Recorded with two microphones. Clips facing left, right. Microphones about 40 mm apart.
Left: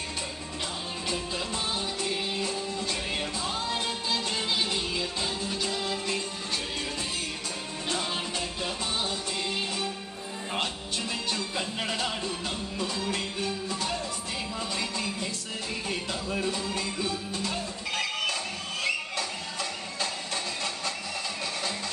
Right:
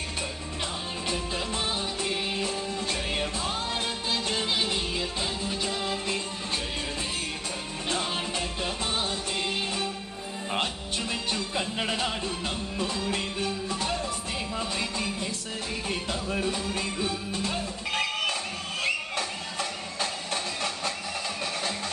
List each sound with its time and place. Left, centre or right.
2.0 s music: right
8.9 s music: right
10.6 s music: centre
15.9 s music: right
18.8 s a sound: right